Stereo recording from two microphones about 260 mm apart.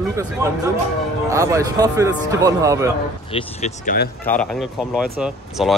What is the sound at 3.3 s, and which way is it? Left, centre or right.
Speech, left.